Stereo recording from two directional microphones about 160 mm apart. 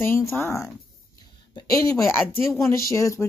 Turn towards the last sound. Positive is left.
turn(degrees=20)  # may be behind; listen again after turning